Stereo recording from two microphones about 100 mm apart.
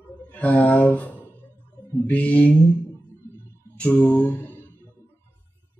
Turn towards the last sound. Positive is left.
turn(degrees=20)  # may be behind; listen again after turning